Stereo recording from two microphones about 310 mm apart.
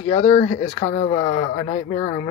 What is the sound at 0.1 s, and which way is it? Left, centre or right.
Speech, centre.